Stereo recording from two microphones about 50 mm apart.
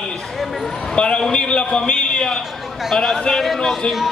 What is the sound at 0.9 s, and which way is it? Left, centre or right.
A man's voice, centre.